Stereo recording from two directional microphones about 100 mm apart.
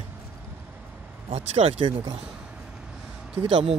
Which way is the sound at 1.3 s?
85° right.